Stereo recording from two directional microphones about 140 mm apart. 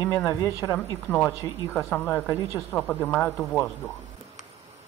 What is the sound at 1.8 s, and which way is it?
A man's voice, 10° left (ahead or behind).